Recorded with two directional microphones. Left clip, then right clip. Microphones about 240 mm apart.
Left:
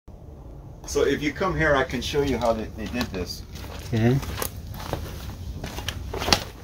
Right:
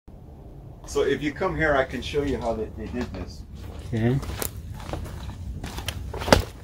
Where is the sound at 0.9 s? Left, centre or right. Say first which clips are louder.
Left 1 dB; left.